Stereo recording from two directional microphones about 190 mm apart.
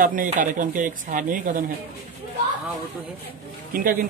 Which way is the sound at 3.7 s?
45° right (ahead or behind).